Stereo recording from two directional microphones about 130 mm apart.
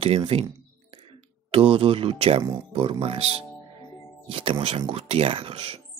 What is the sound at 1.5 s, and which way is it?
Speech, 45° right (ahead or behind).